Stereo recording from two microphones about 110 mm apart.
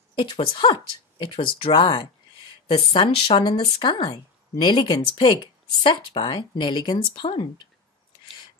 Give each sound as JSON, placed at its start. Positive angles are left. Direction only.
{"t": 0.1, "sound": "speech", "side_deg": 50}
{"t": 3.3, "sound": "speech", "side_deg": 45}